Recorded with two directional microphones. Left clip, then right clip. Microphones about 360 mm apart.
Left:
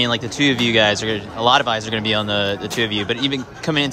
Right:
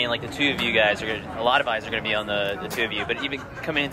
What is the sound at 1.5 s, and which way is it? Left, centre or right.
Speech, centre.